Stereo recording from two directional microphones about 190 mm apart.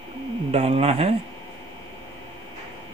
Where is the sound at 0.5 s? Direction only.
30° right (ahead or behind).